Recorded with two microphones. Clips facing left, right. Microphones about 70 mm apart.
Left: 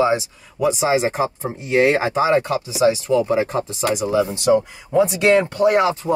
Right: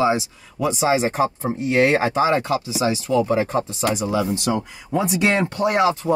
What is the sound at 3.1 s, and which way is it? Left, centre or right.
Speech, centre.